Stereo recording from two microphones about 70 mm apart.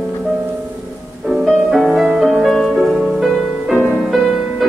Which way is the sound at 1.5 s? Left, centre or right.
Centre.